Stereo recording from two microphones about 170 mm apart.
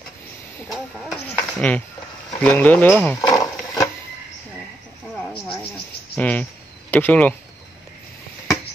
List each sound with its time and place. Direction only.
0.7 s speech: centre (ahead or behind)
1.2 s speech: 10° left (ahead or behind)
3.2 s a sound: 20° left (ahead or behind)
6.1 s speech: 10° left (ahead or behind)